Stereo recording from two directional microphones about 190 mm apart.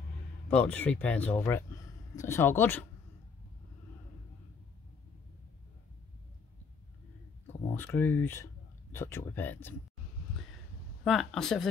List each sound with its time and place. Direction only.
0.5 s speech: 10° left (ahead or behind)
7.4 s speech: 10° left (ahead or behind)
11.1 s speech: centre (ahead or behind)